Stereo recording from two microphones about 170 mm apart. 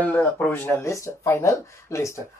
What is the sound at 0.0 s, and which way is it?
Speech, 10° left (ahead or behind).